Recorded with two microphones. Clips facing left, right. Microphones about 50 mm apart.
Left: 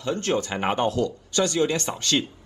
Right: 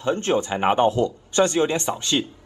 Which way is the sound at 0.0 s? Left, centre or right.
Right.